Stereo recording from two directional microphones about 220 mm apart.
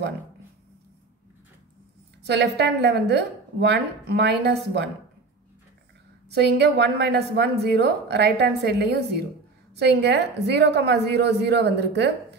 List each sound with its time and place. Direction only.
2.2 s a woman's voice: 50° right (ahead or behind)
6.3 s a woman's voice: 50° right (ahead or behind)